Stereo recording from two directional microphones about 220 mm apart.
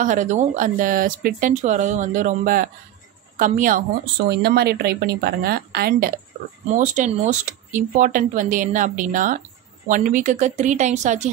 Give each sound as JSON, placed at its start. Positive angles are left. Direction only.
{"t": 0.0, "sound": "a woman's voice", "side_deg": -35}